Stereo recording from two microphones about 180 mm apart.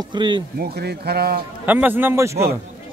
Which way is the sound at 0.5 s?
65° right (ahead or behind).